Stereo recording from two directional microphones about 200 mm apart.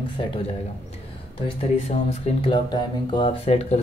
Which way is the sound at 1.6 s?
30° left (ahead or behind).